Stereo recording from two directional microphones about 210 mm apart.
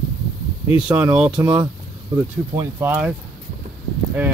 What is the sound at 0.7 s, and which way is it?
Speech, 5° right (ahead or behind).